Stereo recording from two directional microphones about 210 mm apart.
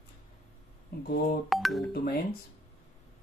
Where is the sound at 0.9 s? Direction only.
45° left (ahead or behind).